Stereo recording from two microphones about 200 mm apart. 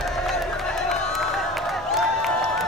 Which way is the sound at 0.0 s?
Centre (ahead or behind).